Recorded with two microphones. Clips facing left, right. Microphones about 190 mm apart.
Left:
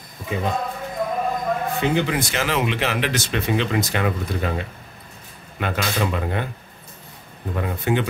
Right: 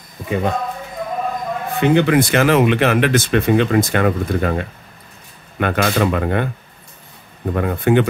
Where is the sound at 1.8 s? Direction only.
60° right (ahead or behind).